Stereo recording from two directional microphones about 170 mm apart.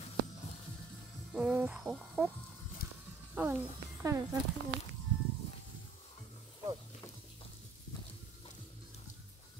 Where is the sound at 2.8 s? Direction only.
65° left (ahead or behind).